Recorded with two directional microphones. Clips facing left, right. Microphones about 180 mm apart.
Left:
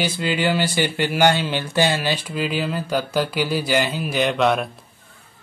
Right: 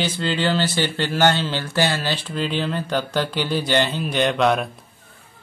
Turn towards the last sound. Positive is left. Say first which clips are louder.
# even
turn(degrees=0)  # may be behind; listen again after turning